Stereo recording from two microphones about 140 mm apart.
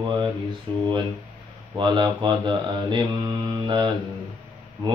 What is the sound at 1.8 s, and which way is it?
Mantra, 35° right (ahead or behind).